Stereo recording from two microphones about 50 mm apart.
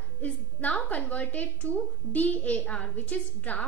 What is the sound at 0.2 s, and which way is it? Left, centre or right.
A woman's voice, left.